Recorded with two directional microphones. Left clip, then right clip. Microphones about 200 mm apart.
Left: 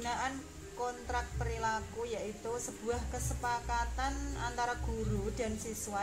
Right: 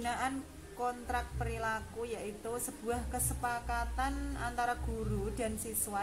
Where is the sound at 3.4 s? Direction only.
15° right (ahead or behind).